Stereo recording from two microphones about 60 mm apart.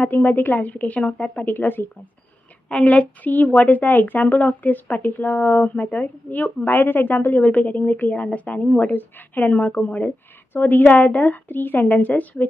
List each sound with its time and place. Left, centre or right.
0.0 s a woman's voice: left
1.4 s a woman's voice: left
2.7 s a woman's voice: left